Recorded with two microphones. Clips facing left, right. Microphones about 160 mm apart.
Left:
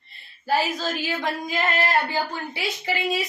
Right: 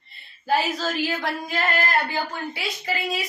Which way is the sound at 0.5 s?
Centre (ahead or behind).